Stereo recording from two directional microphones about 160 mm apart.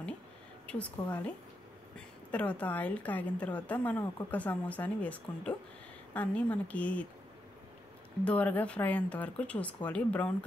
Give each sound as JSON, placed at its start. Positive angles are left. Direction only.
{"t": 0.7, "sound": "a woman's voice", "side_deg": 10}
{"t": 8.3, "sound": "a woman's voice", "side_deg": 10}